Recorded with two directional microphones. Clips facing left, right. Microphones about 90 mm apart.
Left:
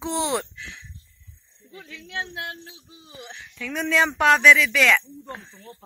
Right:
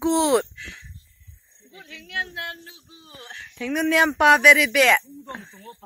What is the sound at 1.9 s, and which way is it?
Speech, 25° left (ahead or behind).